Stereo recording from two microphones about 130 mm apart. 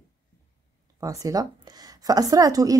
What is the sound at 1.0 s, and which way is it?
A woman's voice, 25° right (ahead or behind).